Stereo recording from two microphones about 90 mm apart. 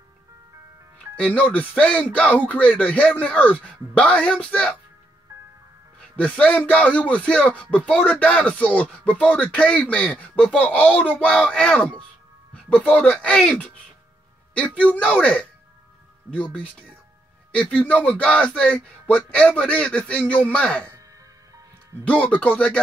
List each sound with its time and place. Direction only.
1.1 s speech: 15° left (ahead or behind)
6.1 s speech: 15° left (ahead or behind)
14.5 s speech: 15° left (ahead or behind)
22.0 s speech: 15° left (ahead or behind)